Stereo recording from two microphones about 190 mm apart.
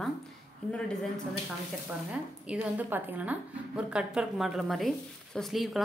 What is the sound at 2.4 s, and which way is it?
A woman's voice, 5° right (ahead or behind).